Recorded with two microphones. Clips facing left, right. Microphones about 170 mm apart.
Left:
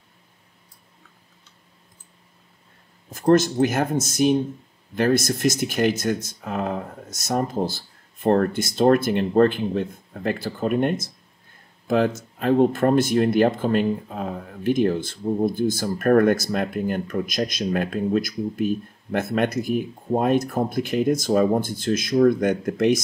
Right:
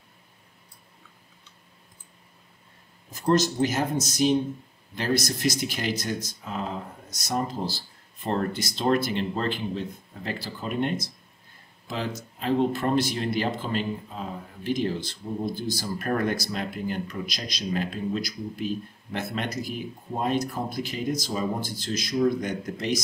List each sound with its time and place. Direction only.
3.1 s speech: 55° left (ahead or behind)